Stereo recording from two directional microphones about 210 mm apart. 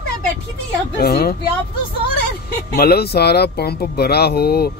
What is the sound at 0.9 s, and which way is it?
Speech, 45° left (ahead or behind).